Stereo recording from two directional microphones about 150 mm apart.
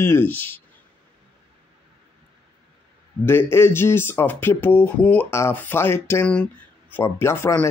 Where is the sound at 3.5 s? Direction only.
15° left (ahead or behind).